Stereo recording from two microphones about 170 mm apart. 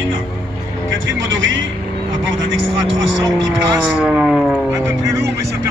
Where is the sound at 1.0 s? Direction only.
90° right.